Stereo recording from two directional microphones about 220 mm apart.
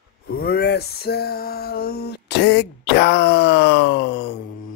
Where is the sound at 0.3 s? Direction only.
45° left (ahead or behind).